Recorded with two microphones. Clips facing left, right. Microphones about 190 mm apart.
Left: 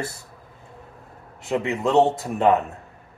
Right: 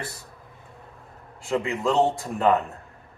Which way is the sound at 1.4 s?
20° left (ahead or behind).